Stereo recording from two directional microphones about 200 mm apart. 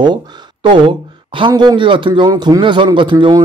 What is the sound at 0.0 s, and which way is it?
Speech, 20° right (ahead or behind).